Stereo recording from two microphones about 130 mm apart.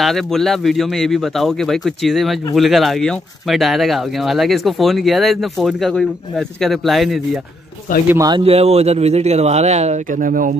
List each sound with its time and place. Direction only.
0.0 s speech: centre (ahead or behind)
8.4 s speech: 50° right (ahead or behind); by 10.5 s 90° right